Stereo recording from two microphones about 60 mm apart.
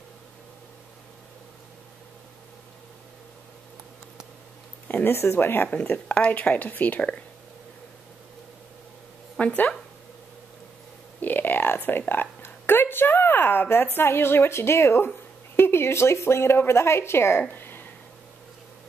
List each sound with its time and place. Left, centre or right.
4.8 s a woman's voice: left
5.7 s speech: left
9.4 s speech: centre
11.1 s a sound: left
12.1 s a woman's voice: left
17.4 s a sound: left